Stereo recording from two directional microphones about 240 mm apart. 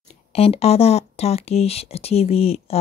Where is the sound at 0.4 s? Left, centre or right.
Left.